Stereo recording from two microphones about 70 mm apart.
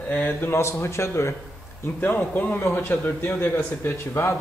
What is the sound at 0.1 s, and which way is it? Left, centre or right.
A man's voice, left.